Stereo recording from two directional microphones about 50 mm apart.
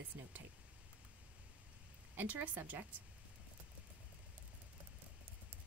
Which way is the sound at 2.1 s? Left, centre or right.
Right.